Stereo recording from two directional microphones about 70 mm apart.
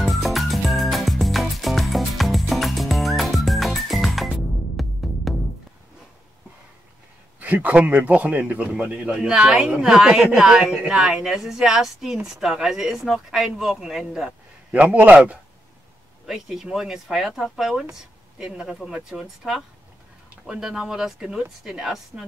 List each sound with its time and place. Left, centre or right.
0.0 s music: centre
7.3 s a man's voice: right; by 14.3 s centre
14.7 s a man's voice: right
16.3 s a man's voice: centre